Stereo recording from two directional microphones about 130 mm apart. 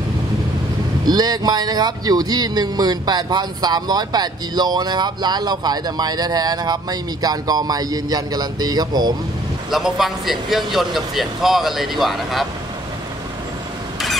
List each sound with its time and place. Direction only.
1.0 s speech: 30° right (ahead or behind)
9.7 s speech: centre (ahead or behind)